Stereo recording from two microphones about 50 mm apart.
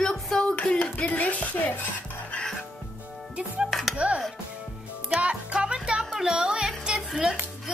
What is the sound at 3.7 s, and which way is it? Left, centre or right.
Speech, centre.